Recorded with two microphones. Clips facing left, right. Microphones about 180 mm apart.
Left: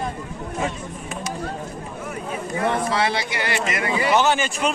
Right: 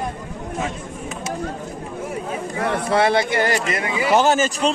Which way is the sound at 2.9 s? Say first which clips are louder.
Right 6 dB; 50° right (ahead or behind).